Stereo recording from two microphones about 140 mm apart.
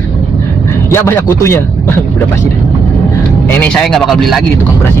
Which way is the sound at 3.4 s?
10° left (ahead or behind).